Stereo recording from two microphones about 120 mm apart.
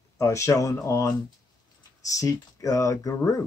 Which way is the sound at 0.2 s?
25° left (ahead or behind).